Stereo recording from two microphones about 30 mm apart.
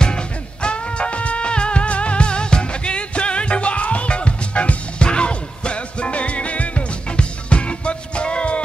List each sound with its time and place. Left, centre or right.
0.0 s music: left